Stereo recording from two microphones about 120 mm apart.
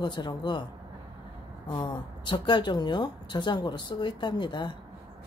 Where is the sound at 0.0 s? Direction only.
40° left (ahead or behind).